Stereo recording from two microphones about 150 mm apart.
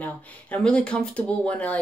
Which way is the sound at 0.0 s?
10° left (ahead or behind).